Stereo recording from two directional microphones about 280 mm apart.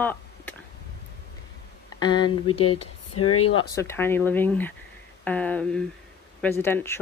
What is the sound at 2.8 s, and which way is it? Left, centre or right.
Speech, left.